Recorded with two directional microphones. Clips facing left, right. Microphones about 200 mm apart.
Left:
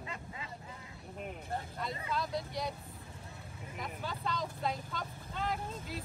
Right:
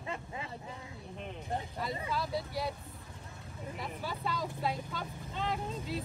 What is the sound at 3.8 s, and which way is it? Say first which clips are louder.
Vehicle: right 1 dB; 5° right (ahead or behind).